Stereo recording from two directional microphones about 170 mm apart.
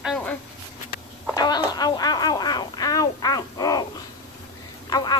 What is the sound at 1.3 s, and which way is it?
Radio, 25° left (ahead or behind).